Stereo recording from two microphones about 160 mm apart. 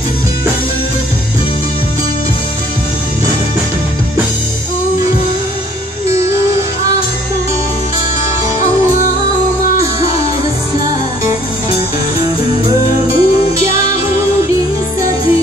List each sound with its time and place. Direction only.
6.0 s music: 20° right (ahead or behind)
9.8 s music: 20° right (ahead or behind)
12.6 s music: 20° right (ahead or behind)